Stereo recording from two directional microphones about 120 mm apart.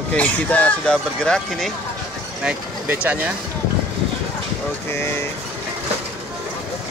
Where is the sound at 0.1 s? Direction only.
10° left (ahead or behind).